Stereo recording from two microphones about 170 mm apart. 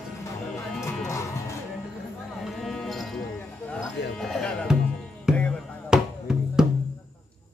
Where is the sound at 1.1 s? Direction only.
15° left (ahead or behind).